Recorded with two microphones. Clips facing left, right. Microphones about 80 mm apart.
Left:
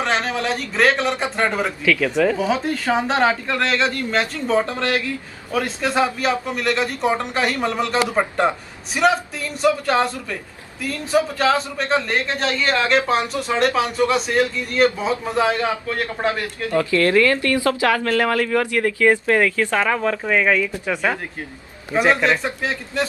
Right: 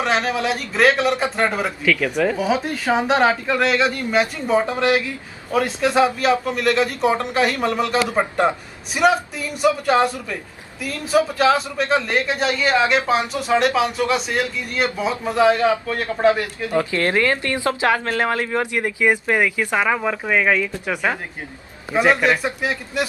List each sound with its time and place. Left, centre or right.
0.0 s a man's voice: centre